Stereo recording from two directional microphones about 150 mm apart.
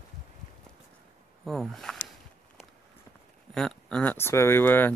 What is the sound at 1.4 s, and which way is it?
Speech, centre (ahead or behind).